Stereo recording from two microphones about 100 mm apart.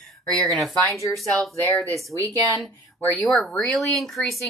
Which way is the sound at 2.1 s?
30° right (ahead or behind).